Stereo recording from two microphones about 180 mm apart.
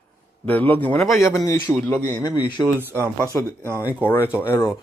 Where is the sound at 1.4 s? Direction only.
20° left (ahead or behind).